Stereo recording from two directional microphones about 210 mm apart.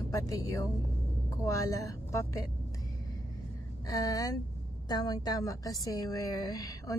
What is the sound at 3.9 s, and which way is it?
A woman's voice, 15° left (ahead or behind).